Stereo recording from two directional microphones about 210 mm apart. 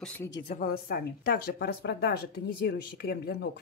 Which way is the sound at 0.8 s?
45° left (ahead or behind).